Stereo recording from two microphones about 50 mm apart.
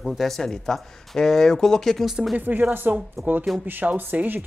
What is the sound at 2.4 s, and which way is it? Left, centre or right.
Speech, right.